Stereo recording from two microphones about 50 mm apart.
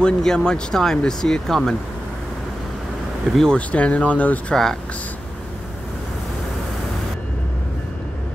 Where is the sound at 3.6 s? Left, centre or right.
Left.